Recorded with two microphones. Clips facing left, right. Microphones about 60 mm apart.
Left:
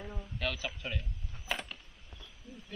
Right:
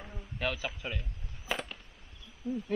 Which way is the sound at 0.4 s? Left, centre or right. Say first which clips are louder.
Right 3 dB; centre.